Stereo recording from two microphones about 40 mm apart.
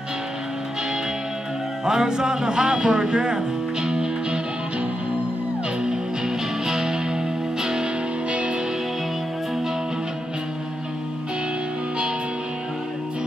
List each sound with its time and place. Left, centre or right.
1.9 s music: centre
8.3 s music: right